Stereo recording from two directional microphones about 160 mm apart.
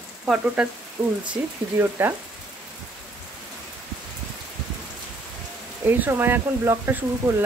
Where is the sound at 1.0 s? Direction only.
5° right (ahead or behind).